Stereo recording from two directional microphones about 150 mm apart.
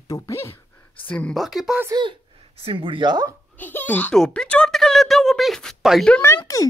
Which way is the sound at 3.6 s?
10° left (ahead or behind).